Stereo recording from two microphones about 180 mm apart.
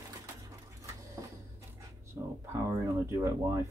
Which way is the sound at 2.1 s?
15° right (ahead or behind).